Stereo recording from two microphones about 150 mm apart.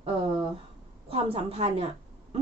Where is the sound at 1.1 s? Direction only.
40° right (ahead or behind).